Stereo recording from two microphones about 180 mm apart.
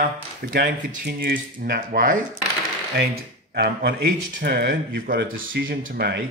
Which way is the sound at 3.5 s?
60° right (ahead or behind).